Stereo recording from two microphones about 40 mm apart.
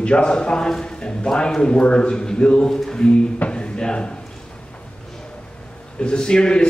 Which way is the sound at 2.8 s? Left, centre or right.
Left.